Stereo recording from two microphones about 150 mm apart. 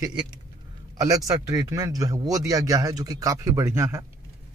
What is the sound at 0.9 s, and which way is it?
A man's voice, 20° right (ahead or behind).